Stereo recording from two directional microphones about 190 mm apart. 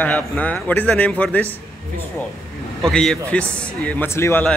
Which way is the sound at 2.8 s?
5° left (ahead or behind).